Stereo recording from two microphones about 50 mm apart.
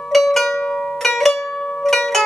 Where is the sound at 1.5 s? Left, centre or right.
Centre.